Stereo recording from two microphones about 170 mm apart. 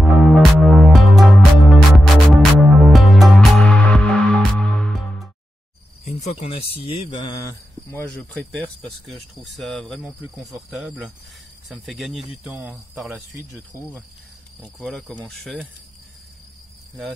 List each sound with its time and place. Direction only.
0.0 s music: centre (ahead or behind)
6.0 s speech: 40° left (ahead or behind)
9.0 s cricket: centre (ahead or behind)
13.3 s speech: 15° right (ahead or behind)
14.6 s cricket: centre (ahead or behind)